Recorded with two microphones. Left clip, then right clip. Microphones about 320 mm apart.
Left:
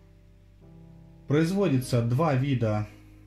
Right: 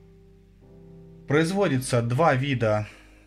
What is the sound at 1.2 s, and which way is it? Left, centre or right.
Speech, right.